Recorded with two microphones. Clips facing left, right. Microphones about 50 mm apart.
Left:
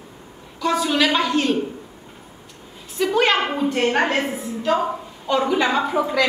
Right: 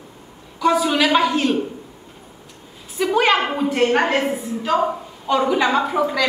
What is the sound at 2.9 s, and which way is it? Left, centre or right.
A woman's voice, centre.